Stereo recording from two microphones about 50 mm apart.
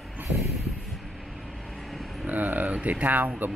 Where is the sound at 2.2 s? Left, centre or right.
Right.